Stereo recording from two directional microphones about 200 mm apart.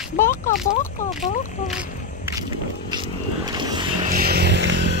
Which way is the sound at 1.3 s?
40° left (ahead or behind).